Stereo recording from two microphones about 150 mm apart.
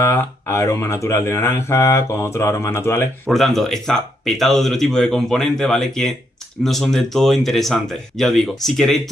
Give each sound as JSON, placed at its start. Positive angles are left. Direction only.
{"t": 0.0, "sound": "speech", "side_deg": 15}
{"t": 3.3, "sound": "speech", "side_deg": 0}